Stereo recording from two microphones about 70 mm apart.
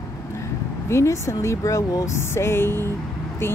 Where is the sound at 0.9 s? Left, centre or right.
Left.